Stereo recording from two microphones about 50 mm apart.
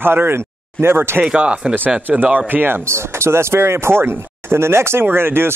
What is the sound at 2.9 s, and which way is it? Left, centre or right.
Speech, right.